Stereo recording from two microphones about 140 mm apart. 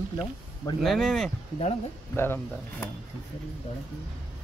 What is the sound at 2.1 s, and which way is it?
Speech, 15° left (ahead or behind).